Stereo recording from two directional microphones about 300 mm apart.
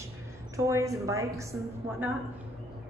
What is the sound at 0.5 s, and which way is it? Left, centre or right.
Speech, centre.